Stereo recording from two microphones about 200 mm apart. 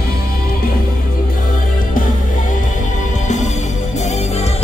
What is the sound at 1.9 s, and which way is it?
Music, 40° left (ahead or behind).